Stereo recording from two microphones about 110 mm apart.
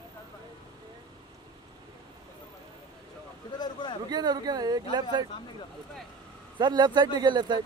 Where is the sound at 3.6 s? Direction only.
45° left (ahead or behind).